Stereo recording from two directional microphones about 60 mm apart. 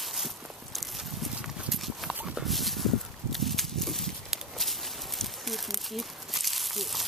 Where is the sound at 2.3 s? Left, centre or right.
Centre.